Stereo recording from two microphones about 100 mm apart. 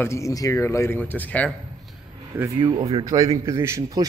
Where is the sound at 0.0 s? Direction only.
30° left (ahead or behind).